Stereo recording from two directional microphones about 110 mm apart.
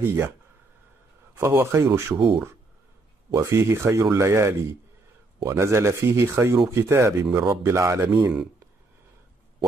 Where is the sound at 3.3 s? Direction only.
25° right (ahead or behind).